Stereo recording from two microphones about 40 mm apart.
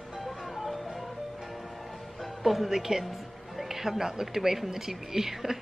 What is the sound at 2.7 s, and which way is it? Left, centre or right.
Speech, centre.